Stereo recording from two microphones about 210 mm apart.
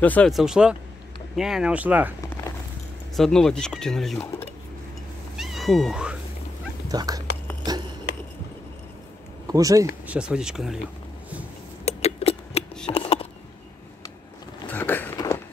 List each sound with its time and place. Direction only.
0.0 s speech: 5° left (ahead or behind)
3.2 s speech: 5° left (ahead or behind)
5.4 s speech: centre (ahead or behind)
6.9 s speech: 15° right (ahead or behind)
7.7 s a sound: 20° right (ahead or behind)
9.5 s speech: 15° right (ahead or behind)
10.0 s speech: 5° right (ahead or behind)
11.8 s a sound: 30° left (ahead or behind)
14.7 s biting: 10° left (ahead or behind)